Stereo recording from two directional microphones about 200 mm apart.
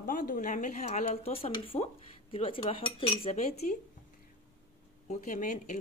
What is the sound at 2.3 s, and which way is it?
Cutlery, 25° left (ahead or behind).